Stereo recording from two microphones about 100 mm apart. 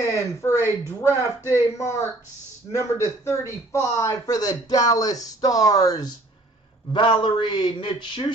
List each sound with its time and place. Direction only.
0.1 s a man's voice: 30° left (ahead or behind)
6.9 s a man's voice: 55° left (ahead or behind)